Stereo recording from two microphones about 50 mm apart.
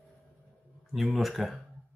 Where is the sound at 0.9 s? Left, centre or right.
Centre.